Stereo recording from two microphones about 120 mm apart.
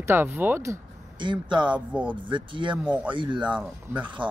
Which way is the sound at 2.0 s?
40° right (ahead or behind).